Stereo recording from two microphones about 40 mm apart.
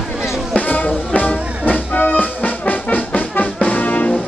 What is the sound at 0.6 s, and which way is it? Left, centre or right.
Music, left.